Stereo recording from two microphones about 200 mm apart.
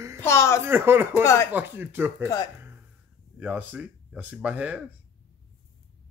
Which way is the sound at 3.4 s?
5° right (ahead or behind).